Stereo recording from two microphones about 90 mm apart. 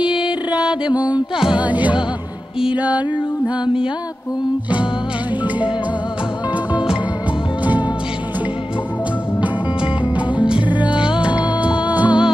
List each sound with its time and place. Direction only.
0.0 s music: 10° right (ahead or behind)
10.8 s music: 10° right (ahead or behind)